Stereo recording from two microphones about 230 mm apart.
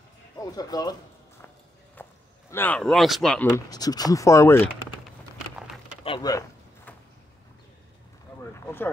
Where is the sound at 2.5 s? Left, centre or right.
Centre.